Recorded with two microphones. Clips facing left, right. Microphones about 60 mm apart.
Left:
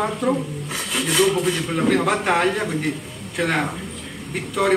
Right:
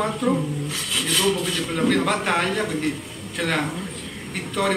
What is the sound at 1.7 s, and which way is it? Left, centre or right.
A man's voice, centre.